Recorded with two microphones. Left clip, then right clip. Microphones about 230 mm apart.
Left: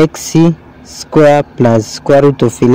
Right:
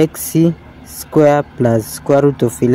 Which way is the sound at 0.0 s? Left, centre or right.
Centre.